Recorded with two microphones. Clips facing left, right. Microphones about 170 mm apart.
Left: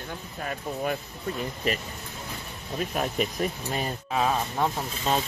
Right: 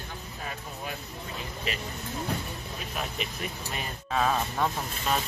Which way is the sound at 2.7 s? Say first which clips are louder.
Left 9 dB; 45° left (ahead or behind).